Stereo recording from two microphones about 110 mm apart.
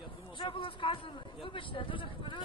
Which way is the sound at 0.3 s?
50° left (ahead or behind).